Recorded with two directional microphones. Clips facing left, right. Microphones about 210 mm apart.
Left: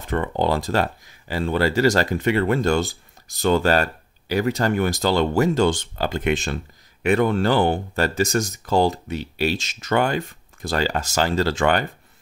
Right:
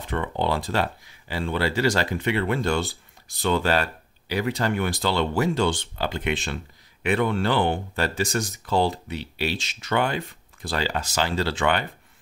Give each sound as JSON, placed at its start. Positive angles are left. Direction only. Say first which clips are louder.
{"t": 0.0, "sound": "speech", "louder": "left 4 dB", "side_deg": 45}